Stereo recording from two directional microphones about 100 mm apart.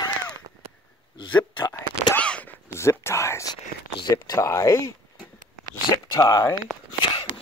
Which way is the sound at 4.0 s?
45° left (ahead or behind).